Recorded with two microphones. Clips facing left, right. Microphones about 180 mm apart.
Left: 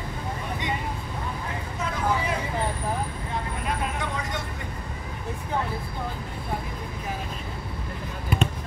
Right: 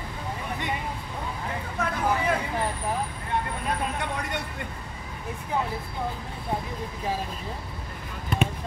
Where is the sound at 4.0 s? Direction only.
60° right (ahead or behind).